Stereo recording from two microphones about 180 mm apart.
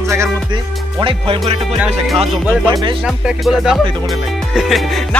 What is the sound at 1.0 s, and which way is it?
Music, 30° right (ahead or behind).